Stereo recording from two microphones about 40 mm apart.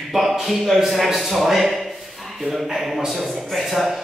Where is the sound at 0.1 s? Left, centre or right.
Centre.